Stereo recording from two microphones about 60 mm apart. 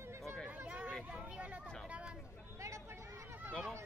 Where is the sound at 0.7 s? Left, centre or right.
Right.